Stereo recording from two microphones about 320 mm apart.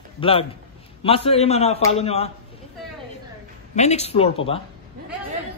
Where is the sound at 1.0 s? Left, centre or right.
Centre.